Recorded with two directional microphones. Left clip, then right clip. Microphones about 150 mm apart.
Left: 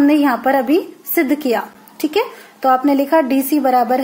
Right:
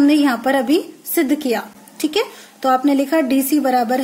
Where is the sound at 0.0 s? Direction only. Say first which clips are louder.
Left 1 dB; 20° right (ahead or behind).